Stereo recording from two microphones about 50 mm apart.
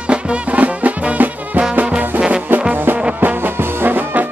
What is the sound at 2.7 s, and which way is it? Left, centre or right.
Music, right.